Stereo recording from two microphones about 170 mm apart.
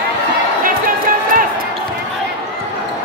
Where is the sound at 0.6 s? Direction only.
55° right (ahead or behind).